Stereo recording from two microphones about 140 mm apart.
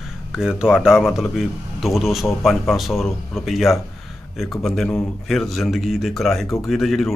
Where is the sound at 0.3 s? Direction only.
5° right (ahead or behind).